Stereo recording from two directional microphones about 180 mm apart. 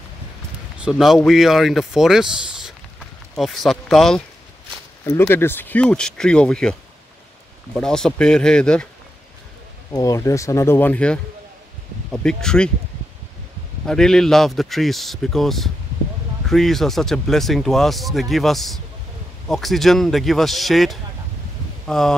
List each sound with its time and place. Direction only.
0.7 s speech: 5° right (ahead or behind)
5.0 s speech: 15° left (ahead or behind)
9.9 s speech: 20° left (ahead or behind)
13.8 s speech: 5° left (ahead or behind)